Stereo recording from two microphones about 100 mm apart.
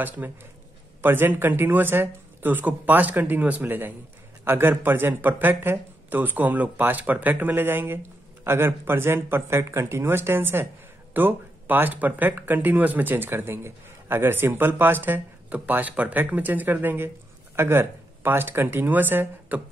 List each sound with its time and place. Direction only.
0.0 s speech: 20° right (ahead or behind)